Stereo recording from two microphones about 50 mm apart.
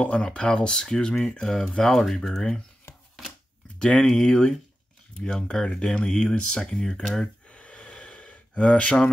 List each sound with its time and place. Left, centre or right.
0.0 s speech: left
1.9 s speech: centre
3.8 s speech: centre
7.4 s gasp: left